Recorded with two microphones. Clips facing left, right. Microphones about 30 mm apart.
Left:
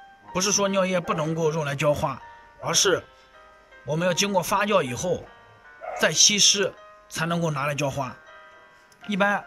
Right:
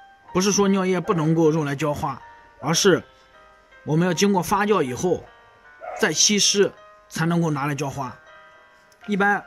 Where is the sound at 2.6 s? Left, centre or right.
Centre.